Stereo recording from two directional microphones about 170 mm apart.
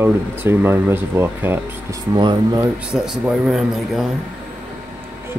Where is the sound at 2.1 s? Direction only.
25° right (ahead or behind).